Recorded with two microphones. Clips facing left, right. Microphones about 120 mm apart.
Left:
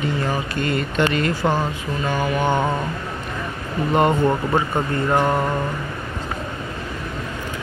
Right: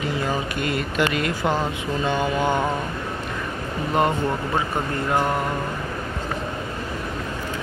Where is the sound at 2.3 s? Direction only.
20° left (ahead or behind).